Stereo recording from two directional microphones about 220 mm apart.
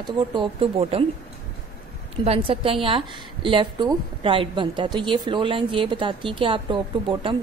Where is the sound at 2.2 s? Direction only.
25° right (ahead or behind).